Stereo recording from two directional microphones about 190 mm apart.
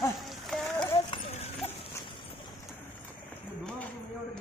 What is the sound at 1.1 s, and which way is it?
Clip-clop, 35° left (ahead or behind).